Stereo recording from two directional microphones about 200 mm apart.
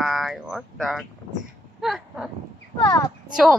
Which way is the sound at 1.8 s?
Centre (ahead or behind).